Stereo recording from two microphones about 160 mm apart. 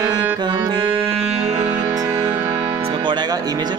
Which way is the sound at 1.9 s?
20° right (ahead or behind).